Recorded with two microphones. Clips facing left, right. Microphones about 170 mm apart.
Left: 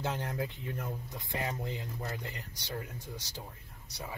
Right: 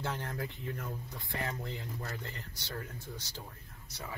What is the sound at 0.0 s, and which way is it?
Speech, 20° left (ahead or behind).